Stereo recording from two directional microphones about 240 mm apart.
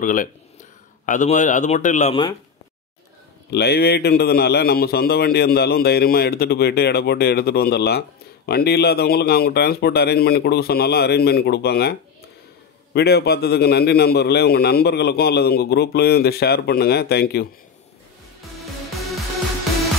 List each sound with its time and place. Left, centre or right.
0.0 s a man's voice: left
3.4 s a man's voice: left
18.9 s music: centre